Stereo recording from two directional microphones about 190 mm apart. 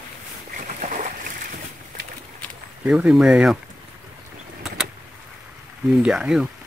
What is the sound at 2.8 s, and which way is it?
Speech, 5° right (ahead or behind).